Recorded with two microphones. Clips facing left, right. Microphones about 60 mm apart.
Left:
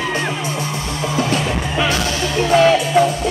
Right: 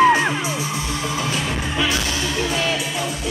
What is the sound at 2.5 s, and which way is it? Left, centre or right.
Music, left.